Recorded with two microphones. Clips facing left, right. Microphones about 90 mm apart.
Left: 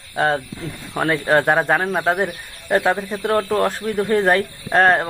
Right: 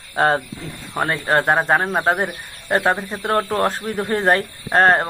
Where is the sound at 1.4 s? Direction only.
20° right (ahead or behind).